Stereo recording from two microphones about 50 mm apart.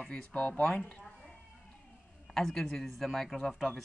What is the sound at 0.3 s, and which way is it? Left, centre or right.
Speech, left.